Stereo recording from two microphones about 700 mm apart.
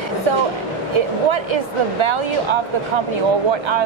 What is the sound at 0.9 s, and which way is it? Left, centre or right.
Speech, right.